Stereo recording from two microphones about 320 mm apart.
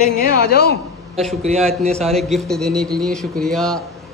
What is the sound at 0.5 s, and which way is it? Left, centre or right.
Speech, left.